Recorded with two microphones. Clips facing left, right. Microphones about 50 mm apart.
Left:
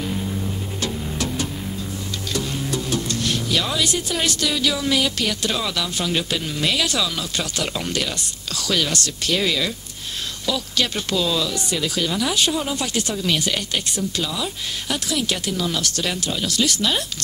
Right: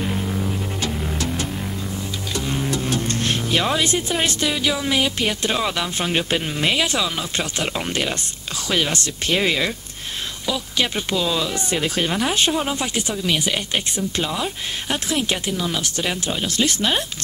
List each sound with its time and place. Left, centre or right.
0.1 s music: right
2.4 s speech: right
13.1 s speech: centre
13.7 s speech: right